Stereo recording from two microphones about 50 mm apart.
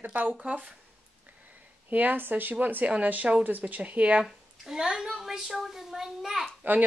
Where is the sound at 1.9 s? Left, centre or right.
Right.